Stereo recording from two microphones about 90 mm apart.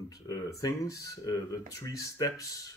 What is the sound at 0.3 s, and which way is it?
Speech, 40° left (ahead or behind).